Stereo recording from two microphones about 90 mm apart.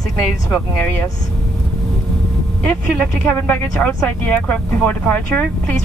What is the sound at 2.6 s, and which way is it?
Speech, 15° left (ahead or behind).